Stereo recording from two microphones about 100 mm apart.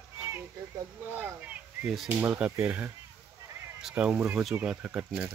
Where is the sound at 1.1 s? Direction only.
15° right (ahead or behind).